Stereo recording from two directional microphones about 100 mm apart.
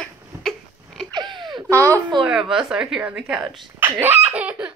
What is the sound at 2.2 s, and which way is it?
A woman's voice, 5° right (ahead or behind).